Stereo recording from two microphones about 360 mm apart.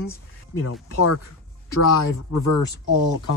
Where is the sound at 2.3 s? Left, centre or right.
Left.